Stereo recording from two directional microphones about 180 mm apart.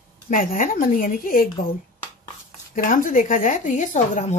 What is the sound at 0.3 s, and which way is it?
Speech, 50° left (ahead or behind).